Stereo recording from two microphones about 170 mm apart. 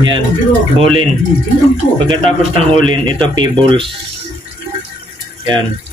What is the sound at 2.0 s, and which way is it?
Speech, 30° right (ahead or behind).